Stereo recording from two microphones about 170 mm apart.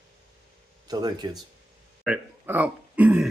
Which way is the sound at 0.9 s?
25° right (ahead or behind).